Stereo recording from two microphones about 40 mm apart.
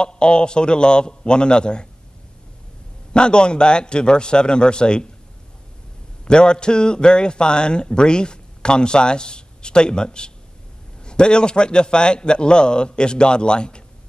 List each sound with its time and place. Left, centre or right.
0.0 s a man's voice: left
3.1 s a man's voice: left
6.2 s a man's voice: left